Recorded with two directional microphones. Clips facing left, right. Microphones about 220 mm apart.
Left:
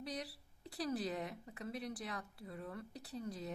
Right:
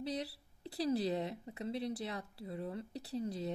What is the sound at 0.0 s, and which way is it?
Speech, 25° right (ahead or behind).